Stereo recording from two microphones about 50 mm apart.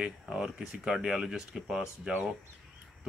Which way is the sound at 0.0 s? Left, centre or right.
Centre.